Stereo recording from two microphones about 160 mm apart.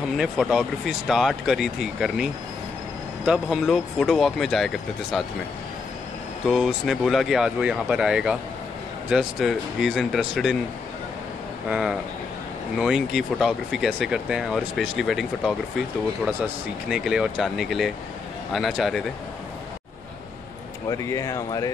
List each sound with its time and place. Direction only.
0.2 s speech: 5° right (ahead or behind)
3.3 s speech: centre (ahead or behind)
6.5 s speech: centre (ahead or behind)
11.7 s speech: 5° right (ahead or behind)
16.9 s speech: 5° right (ahead or behind)
20.9 s speech: 20° left (ahead or behind)